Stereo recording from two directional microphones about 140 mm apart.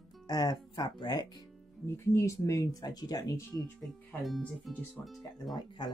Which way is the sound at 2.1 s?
20° left (ahead or behind).